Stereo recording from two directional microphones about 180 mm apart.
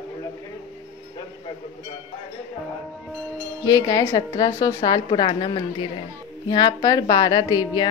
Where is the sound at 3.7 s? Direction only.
20° left (ahead or behind).